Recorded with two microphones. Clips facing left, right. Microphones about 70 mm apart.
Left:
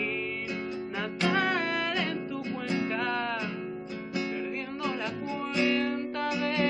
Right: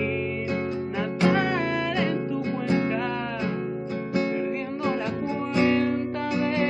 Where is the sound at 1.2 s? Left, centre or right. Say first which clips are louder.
Right 4 dB; centre.